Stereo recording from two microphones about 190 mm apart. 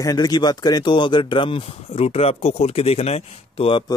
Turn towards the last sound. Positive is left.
turn(degrees=30)  # may be behind; listen again after turning